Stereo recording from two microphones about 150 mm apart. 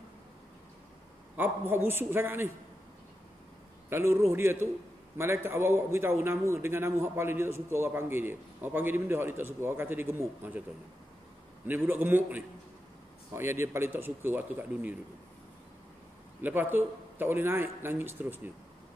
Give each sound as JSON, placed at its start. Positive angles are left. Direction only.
{"t": 1.3, "sound": "a man's voice", "side_deg": -15}
{"t": 3.9, "sound": "a man's voice", "side_deg": -15}
{"t": 11.6, "sound": "a man's voice", "side_deg": -10}
{"t": 16.3, "sound": "a man's voice", "side_deg": -15}